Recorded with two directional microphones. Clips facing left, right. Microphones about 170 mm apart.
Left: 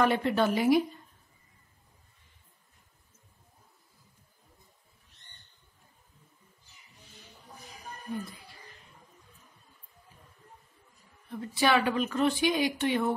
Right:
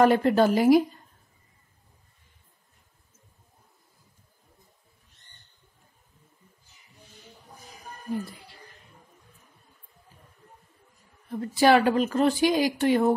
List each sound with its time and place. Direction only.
0.0 s speech: 45° right (ahead or behind)
11.2 s speech: 40° right (ahead or behind)